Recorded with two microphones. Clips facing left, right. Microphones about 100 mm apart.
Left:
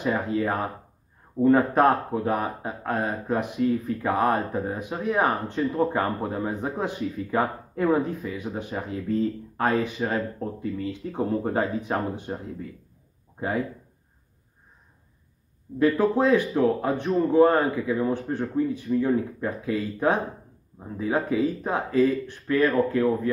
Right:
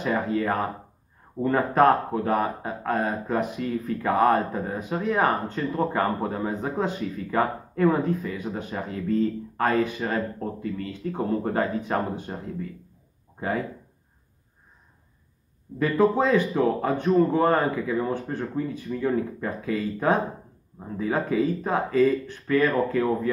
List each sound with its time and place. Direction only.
0.0 s speech: 10° left (ahead or behind)
15.8 s speech: 5° left (ahead or behind)